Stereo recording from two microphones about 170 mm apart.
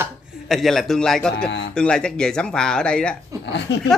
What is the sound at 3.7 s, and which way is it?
Speech, 80° left.